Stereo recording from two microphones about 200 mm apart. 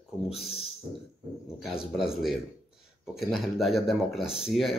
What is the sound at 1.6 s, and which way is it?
A man's voice, centre (ahead or behind).